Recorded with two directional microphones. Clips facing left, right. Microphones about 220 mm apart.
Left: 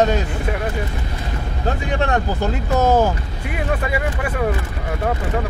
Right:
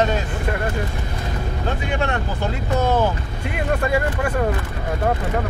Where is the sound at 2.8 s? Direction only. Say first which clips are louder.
Left 4 dB; 45° left (ahead or behind).